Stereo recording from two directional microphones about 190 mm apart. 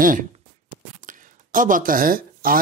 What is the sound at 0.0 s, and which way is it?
Speech, 45° right (ahead or behind).